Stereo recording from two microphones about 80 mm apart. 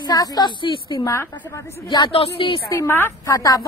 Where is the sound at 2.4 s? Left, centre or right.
Left.